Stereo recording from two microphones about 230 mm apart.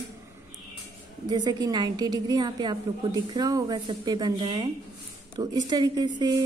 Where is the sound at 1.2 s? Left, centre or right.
Centre.